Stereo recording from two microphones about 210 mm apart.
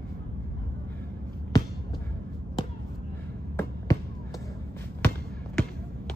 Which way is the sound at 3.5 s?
15° left (ahead or behind).